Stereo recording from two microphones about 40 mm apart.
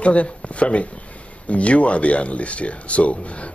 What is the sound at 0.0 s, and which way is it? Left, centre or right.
A man's voice, left.